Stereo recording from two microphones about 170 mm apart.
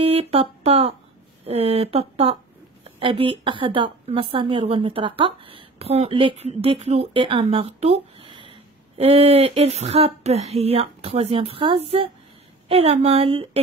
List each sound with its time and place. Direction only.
0.0 s a woman's voice: 35° right (ahead or behind)